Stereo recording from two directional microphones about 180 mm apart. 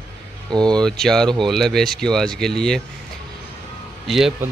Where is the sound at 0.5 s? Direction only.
25° right (ahead or behind).